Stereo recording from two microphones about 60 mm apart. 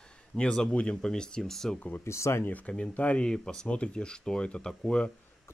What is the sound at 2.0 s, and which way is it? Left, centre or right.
Speech, left.